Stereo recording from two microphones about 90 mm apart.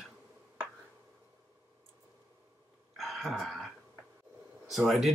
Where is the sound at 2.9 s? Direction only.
Centre (ahead or behind).